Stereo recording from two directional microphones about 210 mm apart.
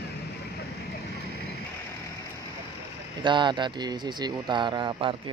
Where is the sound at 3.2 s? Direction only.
20° right (ahead or behind).